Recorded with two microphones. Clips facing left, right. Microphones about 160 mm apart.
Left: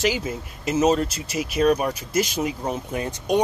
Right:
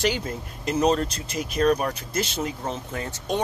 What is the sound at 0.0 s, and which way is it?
Speech, 5° left (ahead or behind).